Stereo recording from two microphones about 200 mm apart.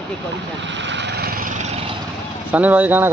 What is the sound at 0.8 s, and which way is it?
Vehicle, 60° right (ahead or behind).